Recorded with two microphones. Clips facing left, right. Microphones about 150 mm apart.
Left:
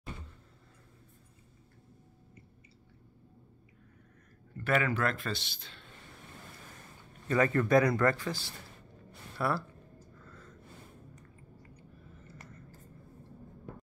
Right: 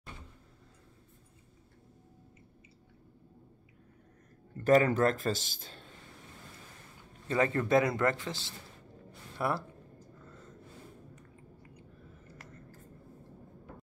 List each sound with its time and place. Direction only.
4.6 s speech: 35° right (ahead or behind)
7.2 s a man's voice: 25° right (ahead or behind)
10.2 s gasp: 20° right (ahead or behind)